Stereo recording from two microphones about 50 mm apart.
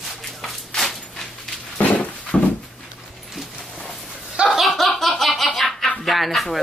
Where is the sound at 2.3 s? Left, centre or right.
Left.